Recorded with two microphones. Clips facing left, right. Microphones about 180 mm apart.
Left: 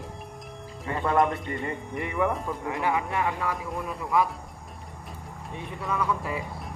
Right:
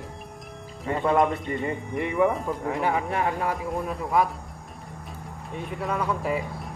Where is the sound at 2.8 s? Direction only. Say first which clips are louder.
Even; 40° right (ahead or behind).